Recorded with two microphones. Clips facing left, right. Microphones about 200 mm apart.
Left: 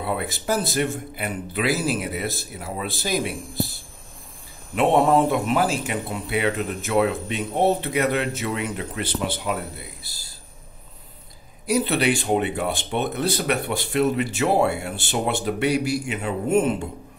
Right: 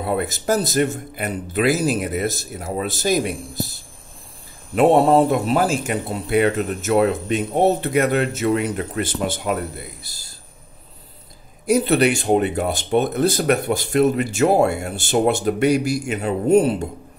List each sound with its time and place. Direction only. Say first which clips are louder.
0.0 s speech: right 4 dB; 45° right (ahead or behind)
4.7 s speech: right 4 dB; 35° right (ahead or behind)
11.6 s speech: right 5 dB; 45° right (ahead or behind)